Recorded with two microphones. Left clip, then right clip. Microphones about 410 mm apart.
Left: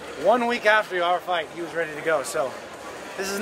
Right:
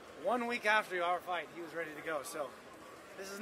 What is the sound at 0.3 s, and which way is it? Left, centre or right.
Speech, right.